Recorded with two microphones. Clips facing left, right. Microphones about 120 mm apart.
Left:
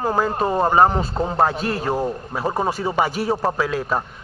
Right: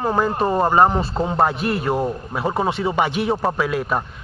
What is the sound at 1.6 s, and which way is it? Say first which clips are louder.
Speech: right 2 dB; 30° left (ahead or behind).